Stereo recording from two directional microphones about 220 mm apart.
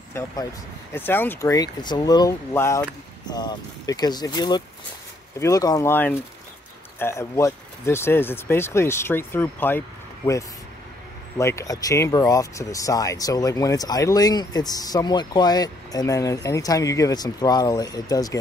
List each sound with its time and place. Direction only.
0.9 s speech: 10° left (ahead or behind)